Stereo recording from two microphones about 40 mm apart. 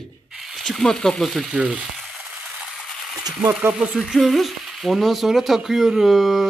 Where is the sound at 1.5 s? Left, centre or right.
Right.